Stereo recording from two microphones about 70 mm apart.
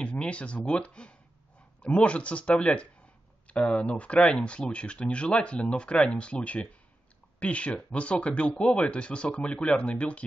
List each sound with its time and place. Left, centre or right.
0.0 s speech: centre